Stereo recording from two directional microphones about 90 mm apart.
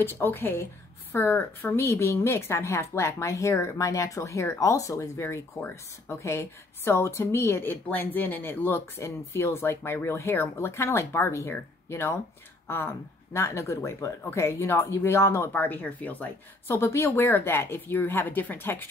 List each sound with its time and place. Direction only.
0.0 s a woman's voice: 25° left (ahead or behind)